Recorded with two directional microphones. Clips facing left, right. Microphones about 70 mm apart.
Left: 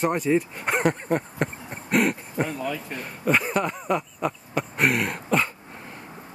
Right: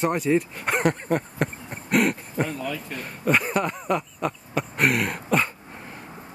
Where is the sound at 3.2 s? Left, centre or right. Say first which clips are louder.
Even; centre.